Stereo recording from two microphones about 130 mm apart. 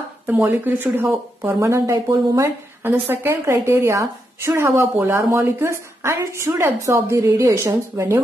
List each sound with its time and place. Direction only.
0.3 s a woman's voice: 15° right (ahead or behind)